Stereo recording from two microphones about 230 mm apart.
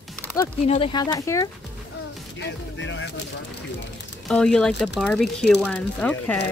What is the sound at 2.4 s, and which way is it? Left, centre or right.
Music, left.